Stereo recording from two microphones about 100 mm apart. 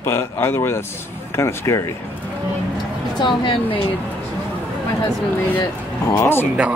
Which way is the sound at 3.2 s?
55° left (ahead or behind).